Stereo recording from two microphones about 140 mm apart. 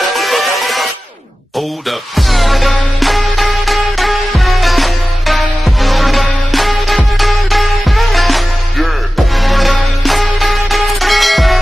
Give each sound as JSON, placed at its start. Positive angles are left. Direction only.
{"t": 0.1, "sound": "music", "side_deg": 0}
{"t": 1.9, "sound": "music", "side_deg": 0}